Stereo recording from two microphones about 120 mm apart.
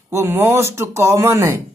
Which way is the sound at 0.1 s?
20° right (ahead or behind).